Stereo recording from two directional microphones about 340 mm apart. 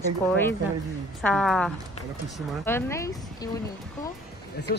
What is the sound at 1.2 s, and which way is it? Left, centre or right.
Speech, centre.